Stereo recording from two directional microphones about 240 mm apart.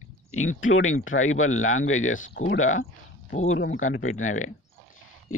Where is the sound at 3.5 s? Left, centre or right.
Left.